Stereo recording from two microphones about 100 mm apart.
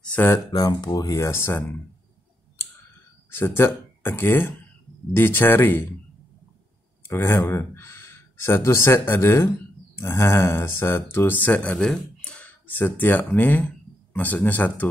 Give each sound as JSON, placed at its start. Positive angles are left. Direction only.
{"t": 0.0, "sound": "a sound", "side_deg": 15}
{"t": 0.5, "sound": "speech", "side_deg": 45}
{"t": 3.3, "sound": "speech", "side_deg": 25}
{"t": 7.1, "sound": "speech", "side_deg": 25}